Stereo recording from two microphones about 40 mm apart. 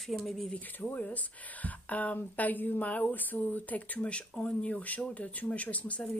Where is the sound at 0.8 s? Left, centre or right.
Left.